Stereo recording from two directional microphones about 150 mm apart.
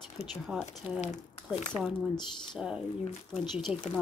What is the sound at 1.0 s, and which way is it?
Speech, 55° left (ahead or behind).